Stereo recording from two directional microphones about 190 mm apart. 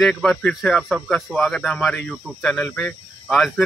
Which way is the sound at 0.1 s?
5° left (ahead or behind).